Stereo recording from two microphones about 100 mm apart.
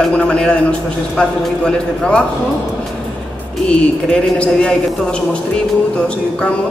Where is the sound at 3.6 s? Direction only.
10° left (ahead or behind).